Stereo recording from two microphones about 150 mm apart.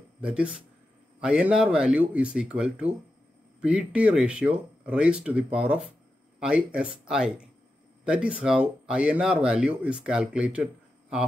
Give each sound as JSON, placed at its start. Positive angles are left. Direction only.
{"t": 0.2, "sound": "speech", "side_deg": -5}